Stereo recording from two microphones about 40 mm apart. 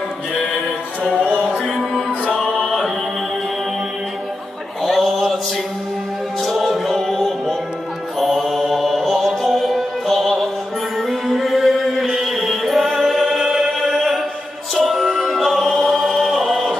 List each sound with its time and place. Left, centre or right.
1.1 s music: right
1.6 s music: centre
4.8 s a sound: centre
6.4 s music: centre